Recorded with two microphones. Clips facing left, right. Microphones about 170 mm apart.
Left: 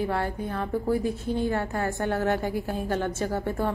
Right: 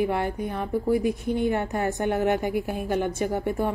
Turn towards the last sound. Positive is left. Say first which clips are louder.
# right 2 dB
turn(degrees=-15)  # may be behind; listen again after turning